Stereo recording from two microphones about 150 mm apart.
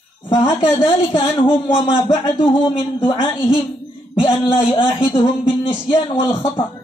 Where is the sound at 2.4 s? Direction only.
35° left (ahead or behind).